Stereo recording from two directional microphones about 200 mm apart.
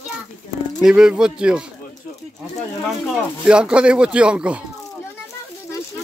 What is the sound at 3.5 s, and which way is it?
Speech, 5° right (ahead or behind).